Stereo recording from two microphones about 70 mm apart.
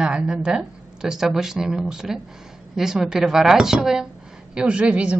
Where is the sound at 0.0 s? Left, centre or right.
Centre.